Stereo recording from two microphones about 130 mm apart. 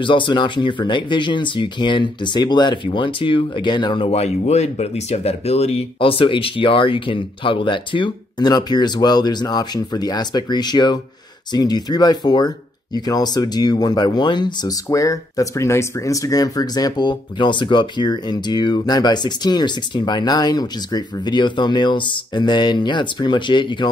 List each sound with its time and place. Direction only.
0.0 s speech: 40° left (ahead or behind)
4.1 s speech: 55° left (ahead or behind); by 23.9 s 35° left (ahead or behind)